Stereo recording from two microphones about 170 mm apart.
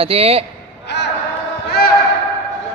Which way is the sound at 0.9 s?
90° left.